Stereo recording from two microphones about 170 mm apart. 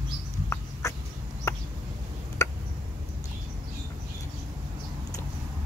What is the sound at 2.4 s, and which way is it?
Tick, 20° left (ahead or behind).